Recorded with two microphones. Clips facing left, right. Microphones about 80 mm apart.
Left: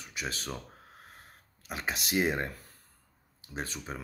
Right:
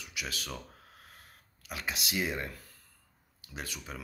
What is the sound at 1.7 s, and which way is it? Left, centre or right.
Speech, left.